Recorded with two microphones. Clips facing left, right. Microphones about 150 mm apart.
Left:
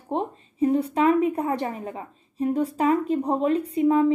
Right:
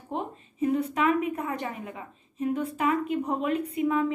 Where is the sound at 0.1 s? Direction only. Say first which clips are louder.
Left 6 dB; 35° left (ahead or behind).